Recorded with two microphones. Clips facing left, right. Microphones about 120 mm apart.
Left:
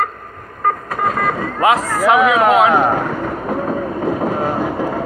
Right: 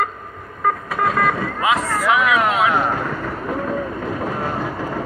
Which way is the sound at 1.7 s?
35° left (ahead or behind).